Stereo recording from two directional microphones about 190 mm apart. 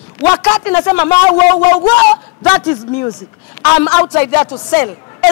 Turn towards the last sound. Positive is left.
turn(degrees=10)  # may be behind; listen again after turning